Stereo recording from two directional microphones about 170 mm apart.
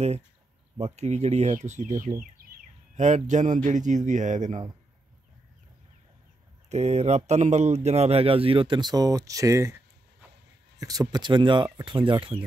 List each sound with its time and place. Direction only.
0.7 s speech: 40° right (ahead or behind)
2.4 s bird: 55° right (ahead or behind)
3.0 s speech: 40° right (ahead or behind)
6.7 s speech: 40° right (ahead or behind); by 9.8 s 15° right (ahead or behind)
10.8 s speech: 20° right (ahead or behind)